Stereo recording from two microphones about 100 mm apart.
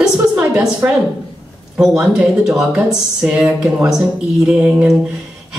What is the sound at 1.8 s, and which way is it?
A woman's voice, 10° right (ahead or behind).